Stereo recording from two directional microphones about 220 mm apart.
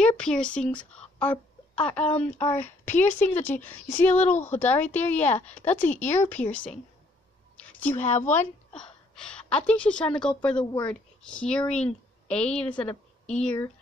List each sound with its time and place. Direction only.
0.0 s a woman's voice: 5° left (ahead or behind)
4.3 s speech: 30° left (ahead or behind)
4.6 s a woman's voice: 10° left (ahead or behind)
7.5 s a sound: 5° left (ahead or behind)
7.9 s speech: 30° left (ahead or behind)
8.3 s a woman's voice: 5° left (ahead or behind)
12.7 s a woman's voice: 25° left (ahead or behind)
13.4 s speech: 5° left (ahead or behind)